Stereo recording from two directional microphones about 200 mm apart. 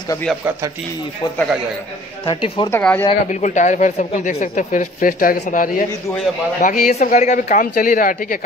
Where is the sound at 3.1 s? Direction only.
35° left (ahead or behind).